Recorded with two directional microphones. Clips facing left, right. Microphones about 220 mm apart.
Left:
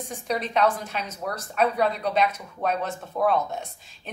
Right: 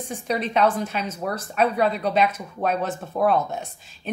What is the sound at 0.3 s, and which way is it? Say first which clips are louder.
A woman's voice: right 2 dB; 5° right (ahead or behind).